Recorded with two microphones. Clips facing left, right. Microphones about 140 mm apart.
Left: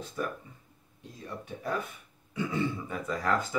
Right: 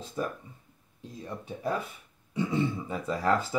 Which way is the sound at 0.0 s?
30° right (ahead or behind).